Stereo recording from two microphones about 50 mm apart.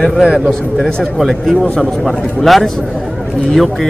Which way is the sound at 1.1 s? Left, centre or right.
Centre.